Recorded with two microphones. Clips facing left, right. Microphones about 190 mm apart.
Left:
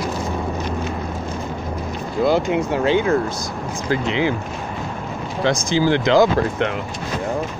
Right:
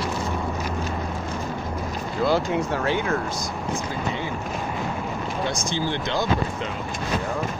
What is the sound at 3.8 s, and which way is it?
Speech, 90° left.